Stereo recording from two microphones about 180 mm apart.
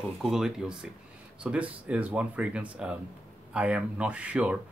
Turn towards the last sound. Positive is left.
turn(degrees=-5)  # may be behind; listen again after turning